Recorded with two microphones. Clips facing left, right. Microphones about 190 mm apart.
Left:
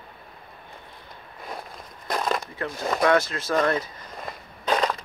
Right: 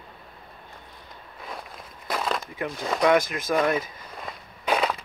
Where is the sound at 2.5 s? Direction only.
15° right (ahead or behind).